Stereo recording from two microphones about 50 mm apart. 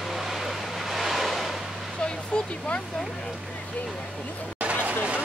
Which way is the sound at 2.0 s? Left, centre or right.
Centre.